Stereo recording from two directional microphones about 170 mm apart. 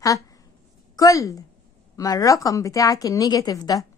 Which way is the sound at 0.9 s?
20° left (ahead or behind).